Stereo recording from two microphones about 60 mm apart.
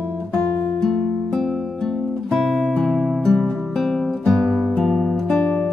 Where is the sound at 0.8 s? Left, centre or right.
Centre.